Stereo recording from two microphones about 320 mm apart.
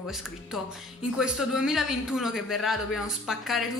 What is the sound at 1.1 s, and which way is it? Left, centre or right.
A man's voice, centre.